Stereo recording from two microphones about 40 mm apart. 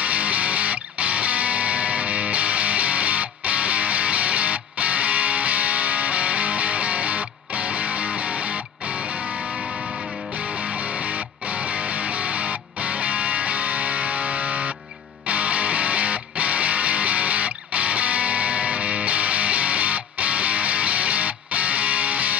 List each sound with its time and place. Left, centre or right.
0.0 s music: right
10.6 s music: right